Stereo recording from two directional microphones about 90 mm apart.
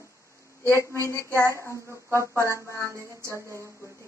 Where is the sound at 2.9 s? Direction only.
30° right (ahead or behind).